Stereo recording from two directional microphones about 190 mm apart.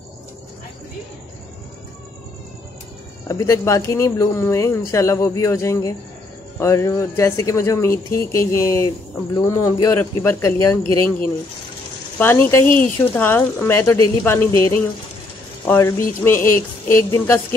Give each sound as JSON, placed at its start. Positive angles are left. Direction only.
{"t": 3.3, "sound": "speech", "side_deg": 15}
{"t": 12.2, "sound": "speech", "side_deg": 10}